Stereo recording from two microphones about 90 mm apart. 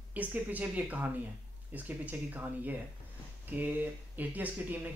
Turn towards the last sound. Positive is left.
turn(degrees=-20)  # may be behind; listen again after turning